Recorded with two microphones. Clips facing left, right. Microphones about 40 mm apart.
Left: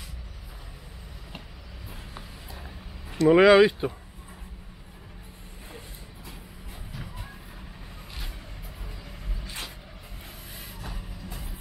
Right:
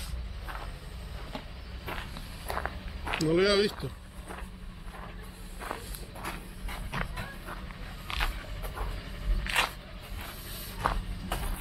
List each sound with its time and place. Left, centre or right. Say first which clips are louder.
1.9 s walk: right 5 dB; right
3.3 s speech: left 9 dB; left
6.2 s dog: right 9 dB; right
8.1 s vehicle: right 11 dB; right
9.4 s a sound: right 11 dB; right
10.8 s a sound: right 14 dB; right